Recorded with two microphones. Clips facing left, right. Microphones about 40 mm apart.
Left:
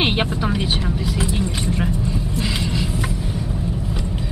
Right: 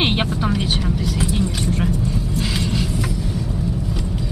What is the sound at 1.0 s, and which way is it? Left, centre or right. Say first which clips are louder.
Speech: right 1 dB; left.